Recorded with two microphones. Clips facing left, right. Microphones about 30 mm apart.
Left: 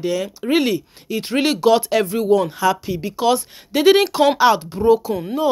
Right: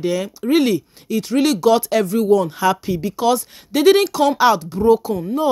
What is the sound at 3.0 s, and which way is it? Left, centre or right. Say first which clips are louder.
Speech: left 1 dB; centre.